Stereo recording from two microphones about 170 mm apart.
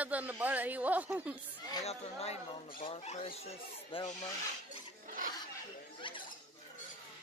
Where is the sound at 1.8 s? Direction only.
40° left (ahead or behind).